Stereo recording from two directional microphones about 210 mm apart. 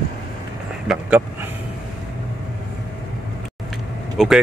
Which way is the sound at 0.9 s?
5° right (ahead or behind).